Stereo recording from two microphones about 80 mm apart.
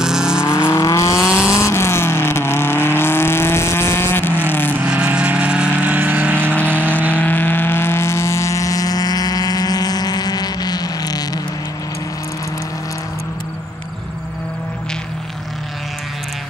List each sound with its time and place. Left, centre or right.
0.0 s vehicle: centre
0.4 s vehicle: left
1.3 s vehicle: centre
1.6 s vehicle: left
4.8 s vehicle: centre
6.5 s vehicle: centre; by 11.4 s left